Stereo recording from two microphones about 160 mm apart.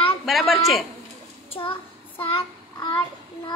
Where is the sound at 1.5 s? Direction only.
35° left (ahead or behind).